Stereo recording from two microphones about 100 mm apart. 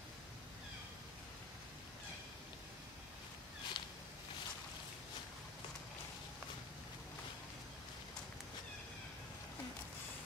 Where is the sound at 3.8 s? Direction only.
50° left (ahead or behind).